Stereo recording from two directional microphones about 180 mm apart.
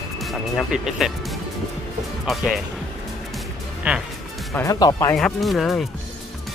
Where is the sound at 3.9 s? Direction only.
5° right (ahead or behind).